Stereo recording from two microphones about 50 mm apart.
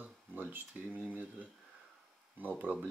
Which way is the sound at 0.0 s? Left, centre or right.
Right.